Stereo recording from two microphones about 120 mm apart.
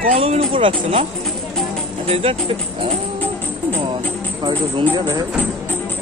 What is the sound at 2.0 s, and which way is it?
Speech, 55° right (ahead or behind).